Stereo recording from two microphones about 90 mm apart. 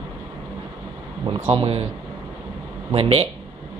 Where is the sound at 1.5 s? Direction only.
85° right.